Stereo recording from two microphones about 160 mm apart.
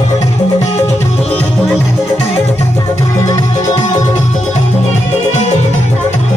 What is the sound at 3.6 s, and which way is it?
Music, 45° left (ahead or behind).